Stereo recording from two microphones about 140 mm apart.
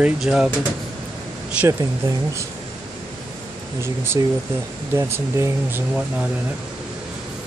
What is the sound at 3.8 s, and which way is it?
Speech, 20° right (ahead or behind).